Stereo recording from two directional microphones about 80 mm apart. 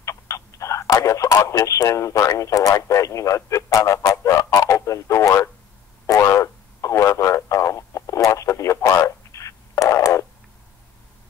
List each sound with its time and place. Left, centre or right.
0.0 s speech: left
6.0 s radio: left